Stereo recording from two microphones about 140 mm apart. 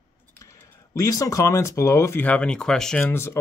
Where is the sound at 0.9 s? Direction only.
25° left (ahead or behind).